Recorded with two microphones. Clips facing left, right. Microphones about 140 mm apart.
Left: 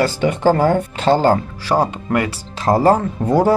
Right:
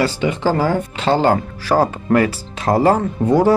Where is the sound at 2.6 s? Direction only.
40° left (ahead or behind).